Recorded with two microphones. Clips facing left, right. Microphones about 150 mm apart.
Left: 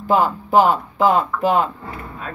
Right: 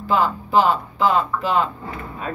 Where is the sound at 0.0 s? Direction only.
50° left (ahead or behind).